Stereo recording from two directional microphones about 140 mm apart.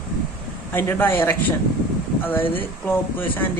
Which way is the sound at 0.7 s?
15° left (ahead or behind).